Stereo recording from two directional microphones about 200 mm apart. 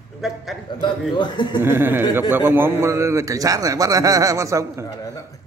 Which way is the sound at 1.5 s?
10° right (ahead or behind).